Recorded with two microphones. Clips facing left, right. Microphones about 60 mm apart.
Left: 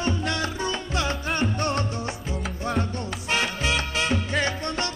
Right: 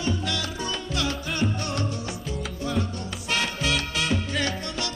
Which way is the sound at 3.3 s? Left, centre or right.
Left.